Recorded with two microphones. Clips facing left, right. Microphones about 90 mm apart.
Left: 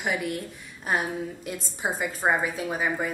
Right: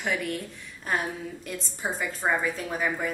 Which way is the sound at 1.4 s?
15° left (ahead or behind).